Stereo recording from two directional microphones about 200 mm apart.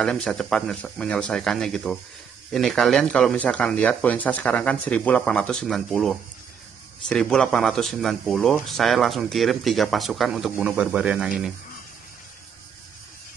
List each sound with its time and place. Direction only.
0.0 s speech: 5° left (ahead or behind)